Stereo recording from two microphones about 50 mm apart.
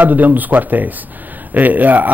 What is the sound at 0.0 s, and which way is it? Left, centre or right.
A man's voice, right.